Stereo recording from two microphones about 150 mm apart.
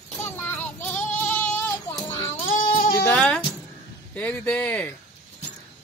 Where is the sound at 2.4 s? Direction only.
60° left (ahead or behind).